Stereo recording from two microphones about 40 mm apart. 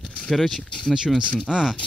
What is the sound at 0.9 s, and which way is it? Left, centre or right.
Speech, centre.